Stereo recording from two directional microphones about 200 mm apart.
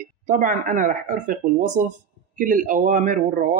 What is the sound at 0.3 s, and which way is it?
Speech, 40° right (ahead or behind).